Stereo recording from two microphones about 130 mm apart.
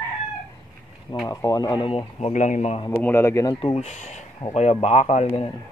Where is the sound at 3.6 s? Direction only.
55° left (ahead or behind).